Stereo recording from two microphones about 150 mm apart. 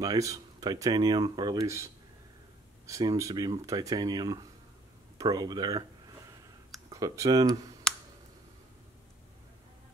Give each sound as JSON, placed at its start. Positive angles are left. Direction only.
{"t": 0.0, "sound": "speech", "side_deg": -25}
{"t": 2.9, "sound": "speech", "side_deg": -25}
{"t": 6.9, "sound": "speech", "side_deg": -25}
{"t": 7.9, "sound": "tick", "side_deg": 5}